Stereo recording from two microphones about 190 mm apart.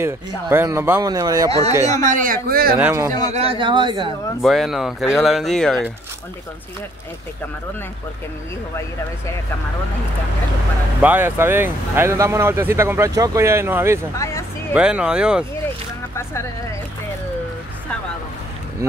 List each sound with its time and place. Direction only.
0.0 s speech: 10° right (ahead or behind)
2.0 s speech: 45° right (ahead or behind)
2.8 s speech: 15° right (ahead or behind)
3.3 s speech: 30° right (ahead or behind)
4.4 s speech: centre (ahead or behind)
11.0 s speech: 10° right (ahead or behind)
14.1 s speech: 15° left (ahead or behind)
14.7 s speech: 5° right (ahead or behind)